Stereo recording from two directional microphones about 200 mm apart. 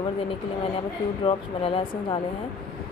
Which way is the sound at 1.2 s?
25° left (ahead or behind).